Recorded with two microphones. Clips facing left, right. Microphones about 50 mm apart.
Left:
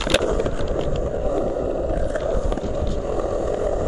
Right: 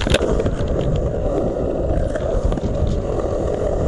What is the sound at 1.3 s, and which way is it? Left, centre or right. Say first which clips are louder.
Skateboard: right 3 dB; centre.